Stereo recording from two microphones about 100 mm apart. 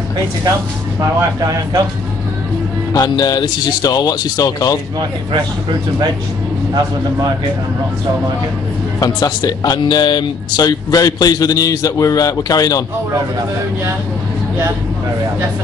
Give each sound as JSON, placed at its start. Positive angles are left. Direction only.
{"t": 1.4, "sound": "speech", "side_deg": -35}
{"t": 2.9, "sound": "speech", "side_deg": 40}
{"t": 9.0, "sound": "speech", "side_deg": 40}